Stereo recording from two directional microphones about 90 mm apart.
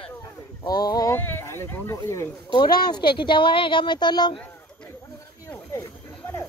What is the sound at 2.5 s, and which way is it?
Speech, 55° left (ahead or behind).